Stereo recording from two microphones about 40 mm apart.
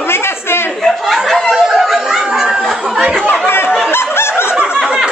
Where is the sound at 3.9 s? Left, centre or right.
Left.